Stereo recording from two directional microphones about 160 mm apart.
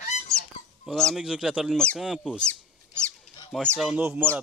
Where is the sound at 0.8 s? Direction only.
Centre (ahead or behind).